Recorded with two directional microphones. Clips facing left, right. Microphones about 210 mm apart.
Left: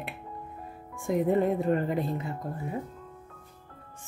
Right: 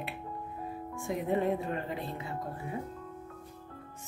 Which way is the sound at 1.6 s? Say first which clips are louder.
Left 9 dB; 45° left (ahead or behind).